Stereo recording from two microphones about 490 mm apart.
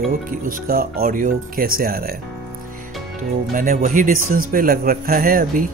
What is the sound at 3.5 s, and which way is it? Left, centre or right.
Speech, centre.